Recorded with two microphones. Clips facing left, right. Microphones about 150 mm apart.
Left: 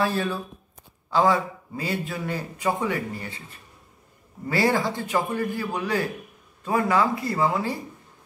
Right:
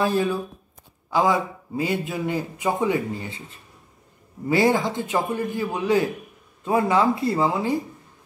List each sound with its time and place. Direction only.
0.0 s a man's voice: 15° right (ahead or behind)